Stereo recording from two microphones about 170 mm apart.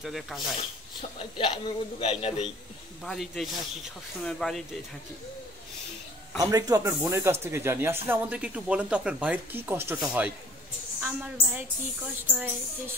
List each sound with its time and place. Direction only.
0.0 s speech: centre (ahead or behind)
1.4 s a man's voice: 30° left (ahead or behind)
3.0 s speech: centre (ahead or behind)
6.3 s speech: 20° right (ahead or behind)